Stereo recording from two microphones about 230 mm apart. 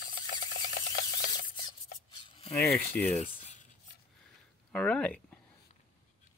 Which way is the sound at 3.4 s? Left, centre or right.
Left.